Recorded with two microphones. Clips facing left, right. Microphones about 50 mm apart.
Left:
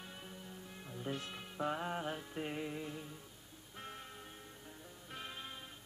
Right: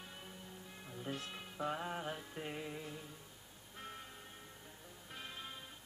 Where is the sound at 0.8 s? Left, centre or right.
Centre.